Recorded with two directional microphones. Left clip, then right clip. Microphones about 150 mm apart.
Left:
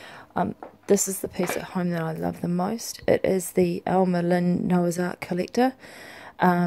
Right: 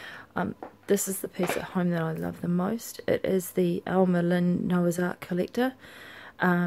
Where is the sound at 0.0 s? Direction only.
15° left (ahead or behind).